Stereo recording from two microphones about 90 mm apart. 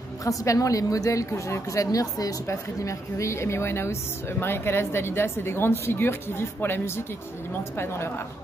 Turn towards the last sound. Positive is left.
turn(degrees=25)  # may be behind; listen again after turning